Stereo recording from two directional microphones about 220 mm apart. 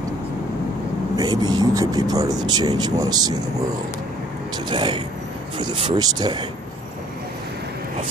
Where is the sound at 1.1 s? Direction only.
20° right (ahead or behind).